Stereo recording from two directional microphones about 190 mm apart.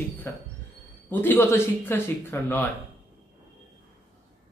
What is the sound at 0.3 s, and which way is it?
A man's voice, 15° left (ahead or behind).